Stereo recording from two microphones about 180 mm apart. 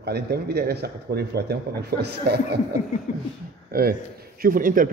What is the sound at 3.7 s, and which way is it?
A man's voice, 55° right (ahead or behind).